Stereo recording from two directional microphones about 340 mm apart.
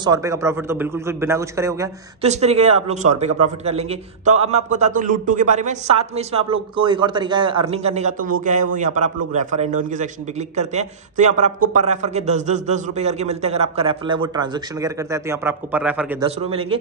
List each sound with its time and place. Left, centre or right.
0.0 s a man's voice: centre
2.2 s a man's voice: centre
16.4 s a man's voice: centre